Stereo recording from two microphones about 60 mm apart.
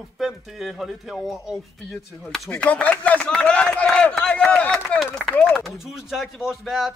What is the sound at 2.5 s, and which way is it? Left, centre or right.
Speech, centre.